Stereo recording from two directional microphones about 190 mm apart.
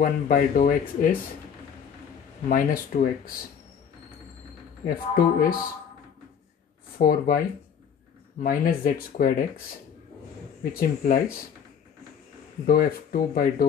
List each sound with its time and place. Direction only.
0.0 s speech: 45° left (ahead or behind)
2.5 s speech: 50° left (ahead or behind)
4.8 s speech: 50° left (ahead or behind)
7.0 s speech: 50° left (ahead or behind)
8.4 s speech: 50° left (ahead or behind)
10.6 s speech: 50° left (ahead or behind)
12.6 s speech: 50° left (ahead or behind)